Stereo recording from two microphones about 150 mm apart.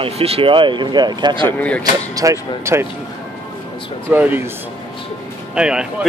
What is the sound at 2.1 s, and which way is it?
Speech, 20° right (ahead or behind).